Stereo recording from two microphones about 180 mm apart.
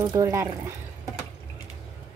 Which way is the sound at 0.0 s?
20° right (ahead or behind).